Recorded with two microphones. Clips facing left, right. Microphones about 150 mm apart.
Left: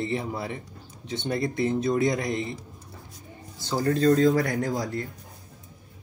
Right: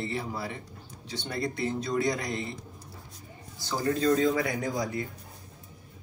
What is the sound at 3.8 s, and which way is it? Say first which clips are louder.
Speech: left 4 dB; 45° left (ahead or behind).